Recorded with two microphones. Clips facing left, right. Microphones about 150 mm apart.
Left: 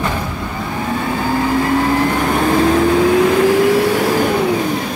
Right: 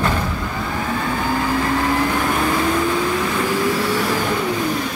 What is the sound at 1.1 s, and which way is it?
Vehicle, 30° left (ahead or behind).